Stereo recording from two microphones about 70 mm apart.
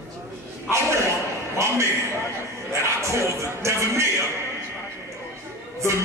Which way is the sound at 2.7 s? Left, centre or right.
Right.